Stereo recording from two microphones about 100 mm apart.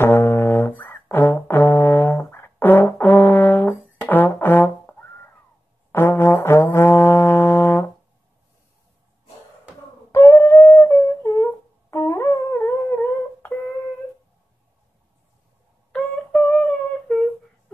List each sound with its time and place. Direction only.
0.0 s brass instrument: 25° left (ahead or behind)
10.1 s a sound: 25° left (ahead or behind)
15.9 s humming: 5° left (ahead or behind)